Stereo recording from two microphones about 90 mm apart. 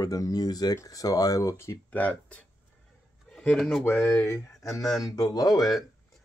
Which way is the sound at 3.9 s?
30° left (ahead or behind).